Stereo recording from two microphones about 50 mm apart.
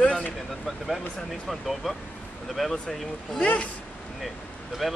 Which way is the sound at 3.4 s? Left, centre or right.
Left.